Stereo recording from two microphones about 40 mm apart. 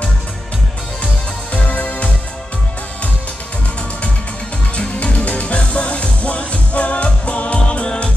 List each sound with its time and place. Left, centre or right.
1.5 s music: left
4.7 s music: left
7.5 s music: left